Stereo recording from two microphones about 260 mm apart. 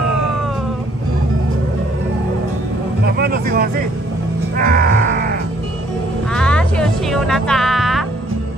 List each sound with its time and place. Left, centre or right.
3.2 s speech: right
4.6 s music: right
6.3 s music: centre